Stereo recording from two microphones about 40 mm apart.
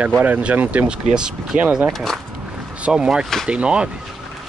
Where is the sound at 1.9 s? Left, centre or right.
Centre.